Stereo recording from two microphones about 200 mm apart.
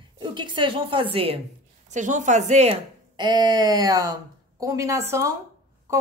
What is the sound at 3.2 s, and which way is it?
A woman's voice, 20° right (ahead or behind).